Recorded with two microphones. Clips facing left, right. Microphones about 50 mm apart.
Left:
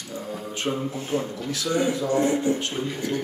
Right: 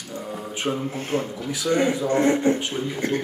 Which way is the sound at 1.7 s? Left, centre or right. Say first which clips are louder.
Right 3 dB; right.